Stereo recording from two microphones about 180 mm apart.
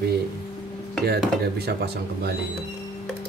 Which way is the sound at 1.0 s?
60° right (ahead or behind).